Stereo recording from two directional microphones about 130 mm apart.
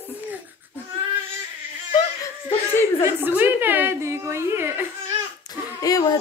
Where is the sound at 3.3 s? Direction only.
15° right (ahead or behind).